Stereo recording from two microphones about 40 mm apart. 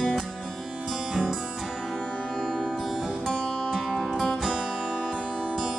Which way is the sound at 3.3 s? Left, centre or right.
Centre.